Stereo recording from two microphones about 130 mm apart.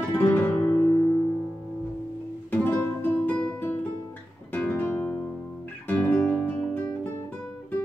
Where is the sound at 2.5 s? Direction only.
20° left (ahead or behind).